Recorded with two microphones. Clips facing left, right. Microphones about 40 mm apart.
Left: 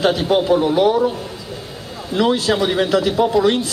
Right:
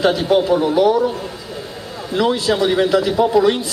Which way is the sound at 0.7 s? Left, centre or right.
Centre.